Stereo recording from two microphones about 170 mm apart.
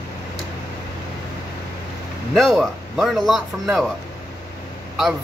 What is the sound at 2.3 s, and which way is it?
Speech, centre (ahead or behind).